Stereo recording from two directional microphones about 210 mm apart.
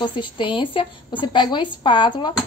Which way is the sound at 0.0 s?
25° left (ahead or behind).